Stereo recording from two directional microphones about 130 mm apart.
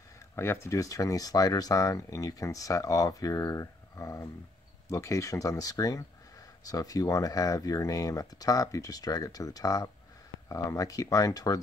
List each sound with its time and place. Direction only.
0.4 s speech: 20° left (ahead or behind)